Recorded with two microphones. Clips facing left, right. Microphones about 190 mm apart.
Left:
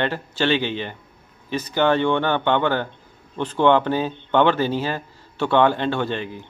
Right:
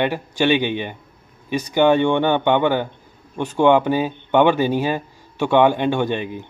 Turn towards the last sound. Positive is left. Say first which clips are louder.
# right 3 dB
turn(degrees=-15)  # may be behind; listen again after turning